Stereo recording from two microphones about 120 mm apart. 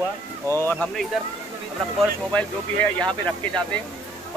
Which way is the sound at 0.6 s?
20° left (ahead or behind).